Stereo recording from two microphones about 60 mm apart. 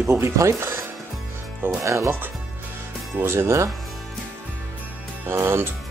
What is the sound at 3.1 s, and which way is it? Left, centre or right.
Speech, right.